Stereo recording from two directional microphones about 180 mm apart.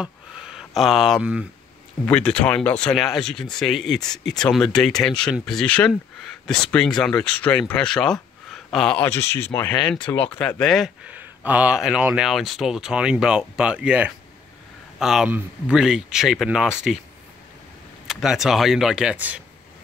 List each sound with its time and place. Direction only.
0.6 s speech: centre (ahead or behind)
18.0 s speech: 5° right (ahead or behind)